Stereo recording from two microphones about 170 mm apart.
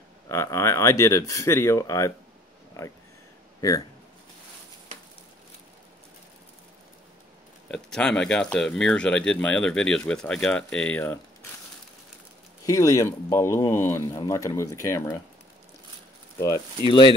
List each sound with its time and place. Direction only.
0.3 s speech: 15° left (ahead or behind)
7.6 s speech: 5° left (ahead or behind)
12.6 s speech: 20° left (ahead or behind)
16.3 s speech: 20° left (ahead or behind)